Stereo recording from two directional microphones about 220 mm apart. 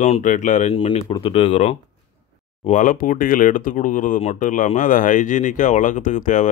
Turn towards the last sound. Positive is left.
turn(degrees=35)  # may be behind; listen again after turning